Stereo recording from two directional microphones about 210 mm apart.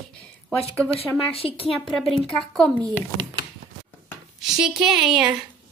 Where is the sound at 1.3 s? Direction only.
25° left (ahead or behind).